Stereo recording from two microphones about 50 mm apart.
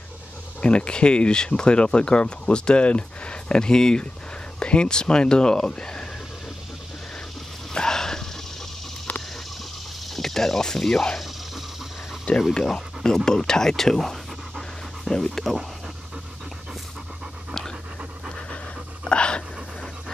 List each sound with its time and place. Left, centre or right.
0.6 s speech: left
7.7 s a sound: centre
10.1 s speech: centre
12.3 s speech: left
12.6 s speech: centre
19.0 s dog: centre